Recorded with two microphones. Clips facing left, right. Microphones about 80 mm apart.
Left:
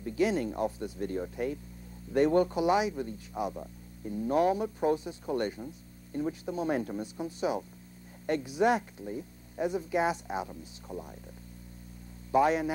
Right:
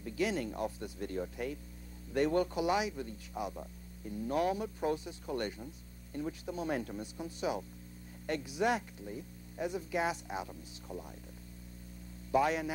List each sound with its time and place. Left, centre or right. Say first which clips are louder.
0.0 s a sound: left 6 dB; left
0.6 s speech: left 6 dB; left
12.3 s speech: left 5 dB; left